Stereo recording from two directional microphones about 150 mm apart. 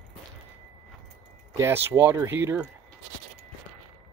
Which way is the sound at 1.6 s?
15° right (ahead or behind).